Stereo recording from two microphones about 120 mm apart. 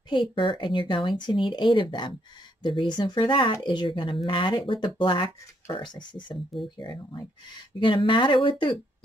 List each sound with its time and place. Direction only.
0.3 s speech: 45° left (ahead or behind)